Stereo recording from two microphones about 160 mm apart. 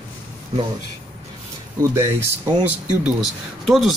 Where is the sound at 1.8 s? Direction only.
15° right (ahead or behind).